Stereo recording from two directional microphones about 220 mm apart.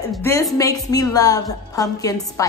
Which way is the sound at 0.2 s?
10° left (ahead or behind).